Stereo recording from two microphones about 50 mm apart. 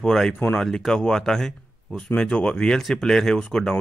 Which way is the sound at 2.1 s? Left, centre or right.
Centre.